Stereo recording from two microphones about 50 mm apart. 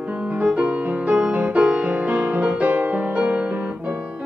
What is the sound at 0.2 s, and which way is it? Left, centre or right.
Music, right.